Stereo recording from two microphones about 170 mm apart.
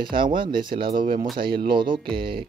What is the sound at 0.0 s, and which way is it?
Speech, 30° right (ahead or behind).